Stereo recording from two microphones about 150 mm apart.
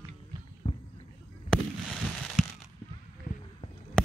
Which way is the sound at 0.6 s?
40° left (ahead or behind).